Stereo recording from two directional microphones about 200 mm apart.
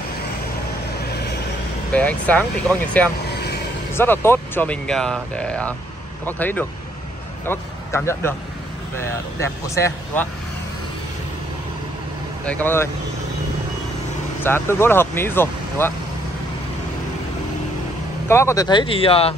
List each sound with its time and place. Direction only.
1.9 s speech: 5° left (ahead or behind)
3.3 s vehicle: 55° left (ahead or behind)
3.9 s speech: 10° left (ahead or behind)
12.4 s speech: 10° left (ahead or behind)
14.4 s speech: 10° left (ahead or behind)
18.3 s speech: 15° left (ahead or behind)